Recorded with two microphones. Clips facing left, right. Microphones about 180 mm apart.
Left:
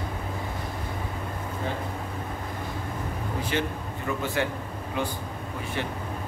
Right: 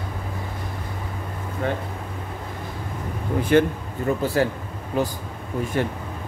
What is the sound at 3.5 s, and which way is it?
Speech, 50° right (ahead or behind).